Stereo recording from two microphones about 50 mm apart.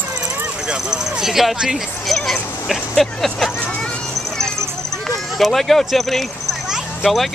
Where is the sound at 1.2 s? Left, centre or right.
Centre.